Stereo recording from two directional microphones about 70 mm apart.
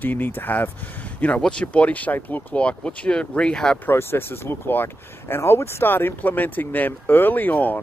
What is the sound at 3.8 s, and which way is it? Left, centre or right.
Speech, left.